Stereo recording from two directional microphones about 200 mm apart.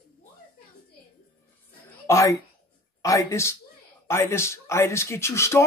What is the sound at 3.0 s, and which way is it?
Speech, 15° left (ahead or behind).